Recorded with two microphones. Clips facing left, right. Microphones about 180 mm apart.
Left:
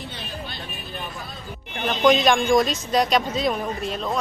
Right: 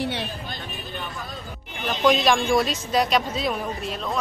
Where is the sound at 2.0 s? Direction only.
Centre (ahead or behind).